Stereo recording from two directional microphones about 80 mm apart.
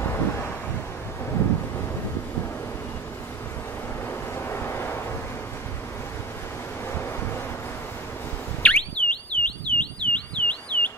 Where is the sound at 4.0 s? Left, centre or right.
Left.